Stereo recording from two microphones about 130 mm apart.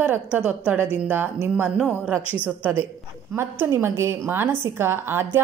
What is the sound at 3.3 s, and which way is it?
A woman's voice, 20° right (ahead or behind).